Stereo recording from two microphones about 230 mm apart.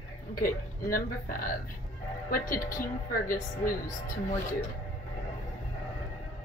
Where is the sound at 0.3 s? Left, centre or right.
Left.